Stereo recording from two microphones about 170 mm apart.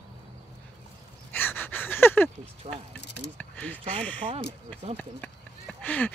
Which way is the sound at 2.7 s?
40° right (ahead or behind).